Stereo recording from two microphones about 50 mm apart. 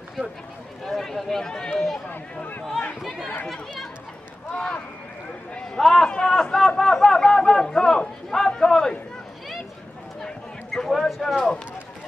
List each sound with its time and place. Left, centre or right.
0.8 s a man's voice: centre
5.8 s a man's voice: centre
6.0 s a man's voice: centre
10.2 s a sound: centre
11.3 s a man's voice: centre